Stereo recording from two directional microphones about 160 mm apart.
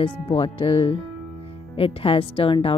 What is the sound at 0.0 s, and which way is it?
Speech, 35° left (ahead or behind).